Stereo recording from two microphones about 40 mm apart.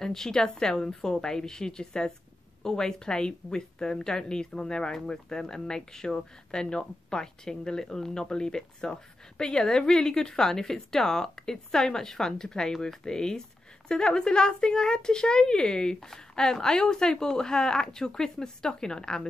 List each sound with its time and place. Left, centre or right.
0.0 s a woman's voice: centre